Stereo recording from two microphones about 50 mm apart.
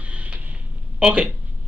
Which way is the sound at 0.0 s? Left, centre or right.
Right.